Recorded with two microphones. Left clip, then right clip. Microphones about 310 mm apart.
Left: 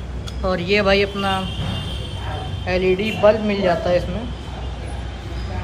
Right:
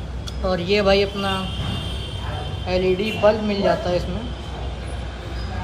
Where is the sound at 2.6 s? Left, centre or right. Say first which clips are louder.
Left 2 dB; centre.